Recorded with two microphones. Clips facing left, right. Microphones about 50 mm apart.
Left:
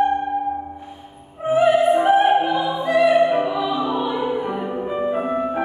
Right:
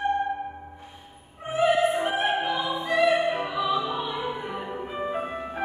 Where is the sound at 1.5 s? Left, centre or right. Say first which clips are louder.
Left 7 dB; centre.